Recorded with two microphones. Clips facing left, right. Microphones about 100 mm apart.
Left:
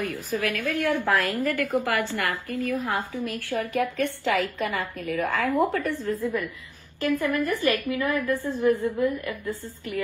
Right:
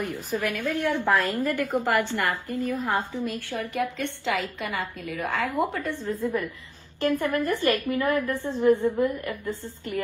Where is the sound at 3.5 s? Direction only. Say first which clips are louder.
Left 6 dB; 15° right (ahead or behind).